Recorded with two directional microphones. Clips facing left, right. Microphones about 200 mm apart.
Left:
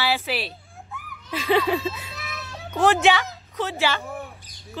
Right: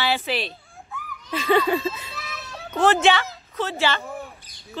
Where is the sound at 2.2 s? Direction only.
15° left (ahead or behind).